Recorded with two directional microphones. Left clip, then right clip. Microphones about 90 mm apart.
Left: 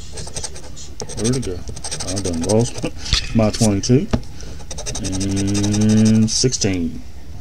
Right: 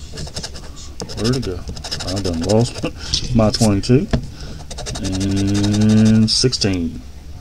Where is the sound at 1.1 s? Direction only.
25° right (ahead or behind).